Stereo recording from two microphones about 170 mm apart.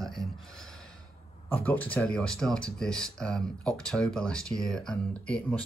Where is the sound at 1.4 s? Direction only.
10° left (ahead or behind).